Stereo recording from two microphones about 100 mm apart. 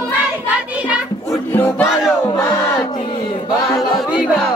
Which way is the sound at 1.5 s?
20° left (ahead or behind).